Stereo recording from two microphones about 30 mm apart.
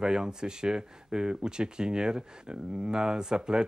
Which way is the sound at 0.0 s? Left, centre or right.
Right.